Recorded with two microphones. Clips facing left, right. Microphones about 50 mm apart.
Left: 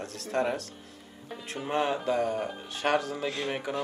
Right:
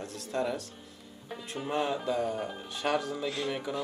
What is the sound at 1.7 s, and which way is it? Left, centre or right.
Speech, left.